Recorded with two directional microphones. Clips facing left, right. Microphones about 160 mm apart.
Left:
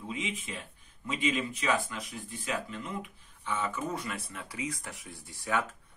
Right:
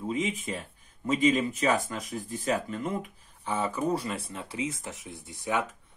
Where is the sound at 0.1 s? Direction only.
45° right (ahead or behind); by 5.7 s 20° right (ahead or behind).